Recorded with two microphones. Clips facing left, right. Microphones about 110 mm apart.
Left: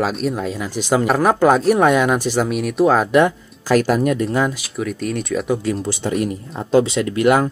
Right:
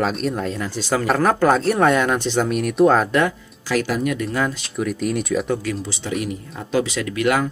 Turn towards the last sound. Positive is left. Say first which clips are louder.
# left 4 dB
turn(degrees=30)  # may be behind; listen again after turning